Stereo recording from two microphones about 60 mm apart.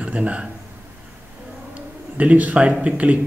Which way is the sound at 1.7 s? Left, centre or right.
Right.